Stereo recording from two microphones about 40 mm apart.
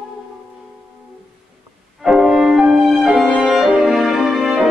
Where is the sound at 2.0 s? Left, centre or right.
Centre.